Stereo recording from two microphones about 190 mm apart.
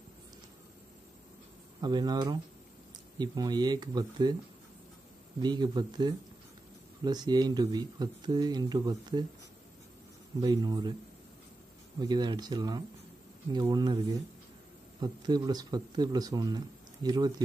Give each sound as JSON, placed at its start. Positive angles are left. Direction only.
{"t": 1.8, "sound": "speech", "side_deg": -20}
{"t": 5.4, "sound": "speech", "side_deg": -20}
{"t": 10.4, "sound": "speech", "side_deg": -20}
{"t": 12.0, "sound": "speech", "side_deg": -20}
{"t": 15.0, "sound": "speech", "side_deg": -20}